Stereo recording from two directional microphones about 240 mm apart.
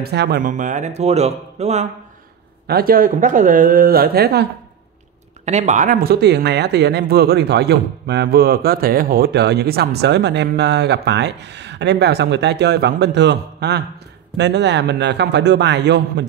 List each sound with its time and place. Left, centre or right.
0.0 s speech: right
2.6 s speech: right
5.4 s speech: right